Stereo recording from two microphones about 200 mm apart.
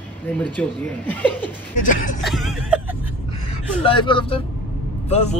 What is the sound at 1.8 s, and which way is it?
Speech, 40° left (ahead or behind).